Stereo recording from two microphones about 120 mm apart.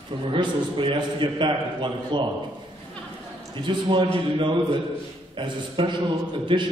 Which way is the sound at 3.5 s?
40° right (ahead or behind).